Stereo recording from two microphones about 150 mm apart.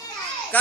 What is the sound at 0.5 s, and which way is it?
Speech, 10° left (ahead or behind).